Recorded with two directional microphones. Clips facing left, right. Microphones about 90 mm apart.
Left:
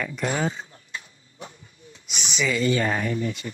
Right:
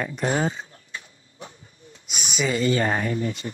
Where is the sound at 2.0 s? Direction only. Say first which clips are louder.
Right 1 dB; 40° right (ahead or behind).